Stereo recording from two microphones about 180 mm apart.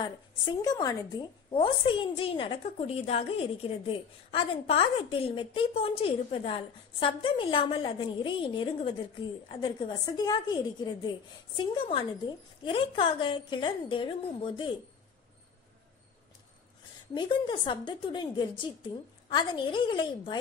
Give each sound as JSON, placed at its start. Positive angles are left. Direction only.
{"t": 0.6, "sound": "a woman's voice", "side_deg": 20}
{"t": 17.1, "sound": "a woman's voice", "side_deg": 25}